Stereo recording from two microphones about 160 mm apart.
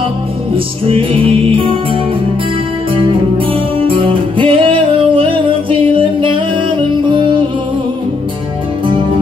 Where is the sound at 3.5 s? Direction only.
35° right (ahead or behind).